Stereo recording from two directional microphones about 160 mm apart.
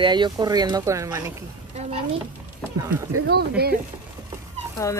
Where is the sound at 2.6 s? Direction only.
Centre (ahead or behind).